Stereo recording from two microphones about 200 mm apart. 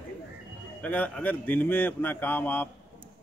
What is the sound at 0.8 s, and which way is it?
A man's voice, 10° left (ahead or behind).